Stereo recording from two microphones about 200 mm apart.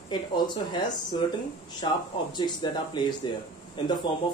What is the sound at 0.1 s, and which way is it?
Speech, 20° left (ahead or behind).